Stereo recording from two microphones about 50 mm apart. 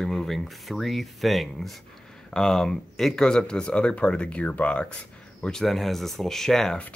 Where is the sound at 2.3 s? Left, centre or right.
Centre.